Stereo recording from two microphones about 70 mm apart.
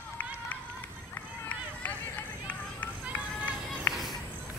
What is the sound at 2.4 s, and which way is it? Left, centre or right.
Children playing, left.